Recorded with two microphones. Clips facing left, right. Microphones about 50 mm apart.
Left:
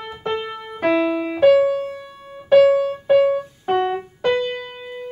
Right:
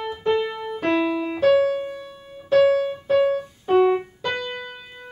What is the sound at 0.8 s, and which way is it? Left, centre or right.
Music, centre.